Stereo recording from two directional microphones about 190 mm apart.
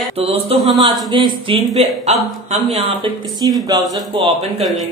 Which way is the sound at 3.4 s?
25° right (ahead or behind).